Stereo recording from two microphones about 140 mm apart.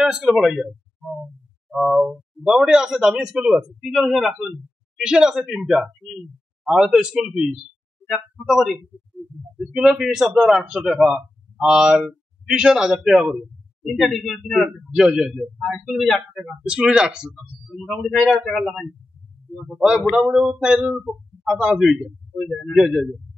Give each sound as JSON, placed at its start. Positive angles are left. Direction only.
{"t": 0.0, "sound": "speech", "side_deg": -5}